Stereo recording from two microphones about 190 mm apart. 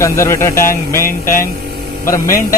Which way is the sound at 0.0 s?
15° left (ahead or behind).